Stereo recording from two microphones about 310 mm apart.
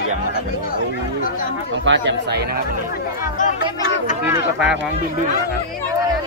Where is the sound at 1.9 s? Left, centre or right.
Right.